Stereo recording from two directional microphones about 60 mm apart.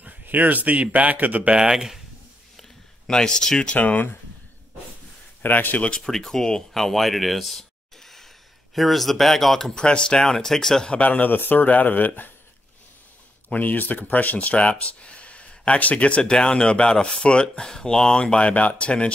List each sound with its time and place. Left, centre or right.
0.0 s speech: right
1.6 s speech: centre
3.1 s speech: centre
5.4 s speech: left
5.9 s speech: centre
10.9 s speech: left
13.5 s speech: left